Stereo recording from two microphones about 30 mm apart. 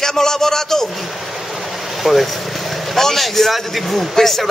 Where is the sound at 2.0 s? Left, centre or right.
Centre.